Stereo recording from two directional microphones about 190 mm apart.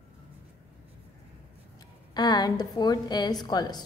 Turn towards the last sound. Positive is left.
turn(degrees=20)  # may be behind; listen again after turning